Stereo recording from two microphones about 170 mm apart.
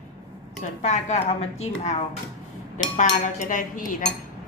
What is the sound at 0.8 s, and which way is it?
Speech, 40° left (ahead or behind).